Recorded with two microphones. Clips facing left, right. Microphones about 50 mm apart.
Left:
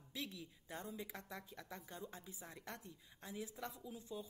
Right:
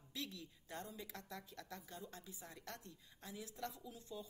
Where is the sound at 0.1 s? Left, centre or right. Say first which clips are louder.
Left 1 dB; centre.